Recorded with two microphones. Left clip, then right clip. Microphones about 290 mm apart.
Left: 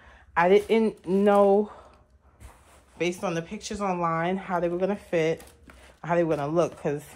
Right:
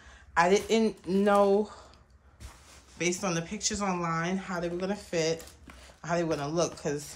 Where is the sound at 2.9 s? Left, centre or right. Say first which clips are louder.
Left 2 dB; centre.